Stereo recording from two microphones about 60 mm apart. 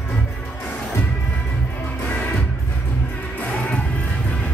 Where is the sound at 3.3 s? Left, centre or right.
Left.